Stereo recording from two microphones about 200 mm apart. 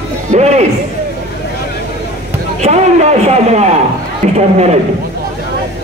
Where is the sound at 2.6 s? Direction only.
35° right (ahead or behind).